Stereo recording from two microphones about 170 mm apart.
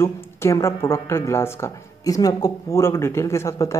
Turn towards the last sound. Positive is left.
turn(degrees=20)  # may be behind; listen again after turning